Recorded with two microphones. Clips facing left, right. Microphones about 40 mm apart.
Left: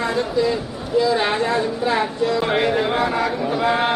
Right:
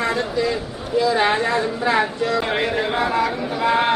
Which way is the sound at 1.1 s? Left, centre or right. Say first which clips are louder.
Right 1 dB; centre.